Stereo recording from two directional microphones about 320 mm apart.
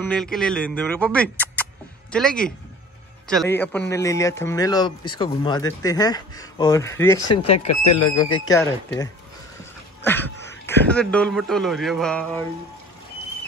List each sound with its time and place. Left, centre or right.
0.1 s a man's voice: centre
7.6 s speech: left
8.5 s a man's voice: centre